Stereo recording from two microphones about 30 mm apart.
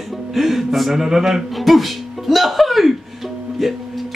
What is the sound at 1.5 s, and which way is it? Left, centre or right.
Music, centre.